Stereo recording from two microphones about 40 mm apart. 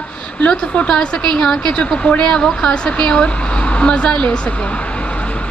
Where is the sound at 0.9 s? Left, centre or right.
Left.